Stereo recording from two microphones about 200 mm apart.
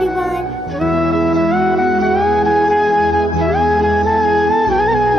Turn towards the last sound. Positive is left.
turn(degrees=0)  # may be behind; listen again after turning